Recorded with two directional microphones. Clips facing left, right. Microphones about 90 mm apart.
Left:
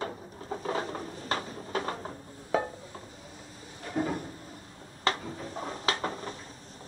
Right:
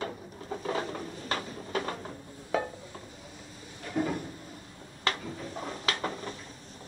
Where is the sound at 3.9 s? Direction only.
30° left (ahead or behind).